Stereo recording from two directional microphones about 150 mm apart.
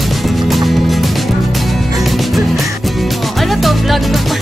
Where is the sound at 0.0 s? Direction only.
Centre (ahead or behind).